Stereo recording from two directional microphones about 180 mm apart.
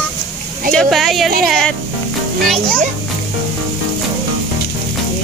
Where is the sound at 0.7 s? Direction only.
Centre (ahead or behind).